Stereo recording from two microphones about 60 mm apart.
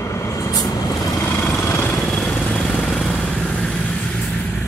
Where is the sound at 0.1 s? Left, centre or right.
Left.